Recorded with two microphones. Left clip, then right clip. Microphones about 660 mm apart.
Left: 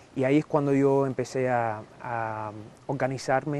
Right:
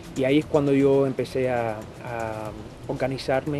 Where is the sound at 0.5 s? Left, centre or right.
Left.